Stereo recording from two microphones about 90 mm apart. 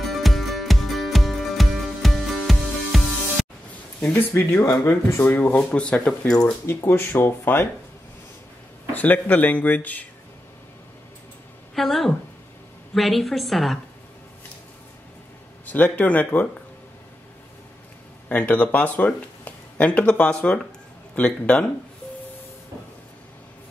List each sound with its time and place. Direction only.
0.0 s music: centre (ahead or behind)
4.0 s speech: 15° left (ahead or behind)
5.3 s speech: 20° left (ahead or behind)
6.6 s speech: 30° left (ahead or behind)
8.9 s speech: 20° left (ahead or behind)
11.7 s a woman's voice: centre (ahead or behind)
15.6 s speech: 20° left (ahead or behind)
18.3 s speech: 15° left (ahead or behind)